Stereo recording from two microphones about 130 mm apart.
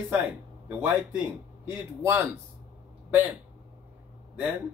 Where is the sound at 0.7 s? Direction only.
10° right (ahead or behind).